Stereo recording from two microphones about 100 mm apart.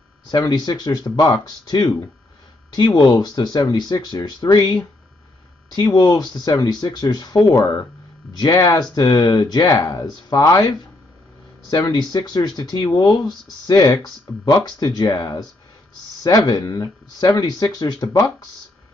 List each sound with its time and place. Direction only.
0.3 s speech: 40° left (ahead or behind)
3.0 s speech: 45° left (ahead or behind)
5.8 s speech: 45° left (ahead or behind)